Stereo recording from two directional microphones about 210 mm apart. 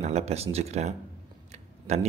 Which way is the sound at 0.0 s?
30° right (ahead or behind).